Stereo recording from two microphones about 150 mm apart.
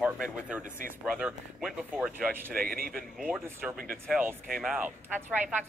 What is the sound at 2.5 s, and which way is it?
Speech, 75° right (ahead or behind).